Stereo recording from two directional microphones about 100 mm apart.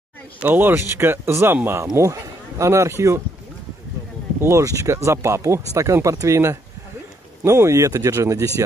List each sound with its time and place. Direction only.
0.4 s speech: 20° right (ahead or behind)
1.9 s speech: 35° right (ahead or behind)
4.4 s speech: 30° right (ahead or behind)